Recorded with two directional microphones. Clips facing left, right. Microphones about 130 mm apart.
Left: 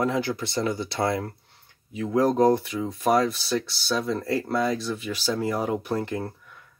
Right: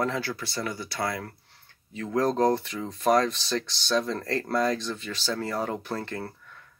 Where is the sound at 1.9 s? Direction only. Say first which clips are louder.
Left 4 dB; 10° left (ahead or behind).